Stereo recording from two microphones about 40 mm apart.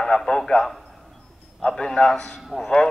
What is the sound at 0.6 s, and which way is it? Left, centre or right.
Speech, centre.